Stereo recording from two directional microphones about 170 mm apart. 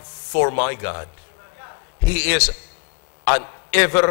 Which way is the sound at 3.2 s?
20° left (ahead or behind).